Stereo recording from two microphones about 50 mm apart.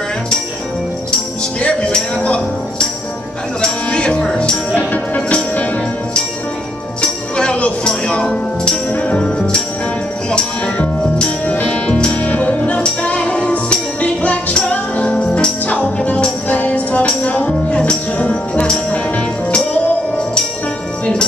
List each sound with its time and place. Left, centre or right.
1.6 s music: left
2.2 s speech: left
3.6 s music: centre
4.7 s music: left
7.0 s music: left
11.4 s music: left